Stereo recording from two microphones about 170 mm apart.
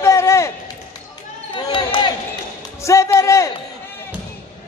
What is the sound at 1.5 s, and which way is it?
Speech, 30° left (ahead or behind).